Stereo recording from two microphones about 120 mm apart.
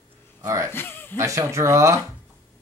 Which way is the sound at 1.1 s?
25° right (ahead or behind).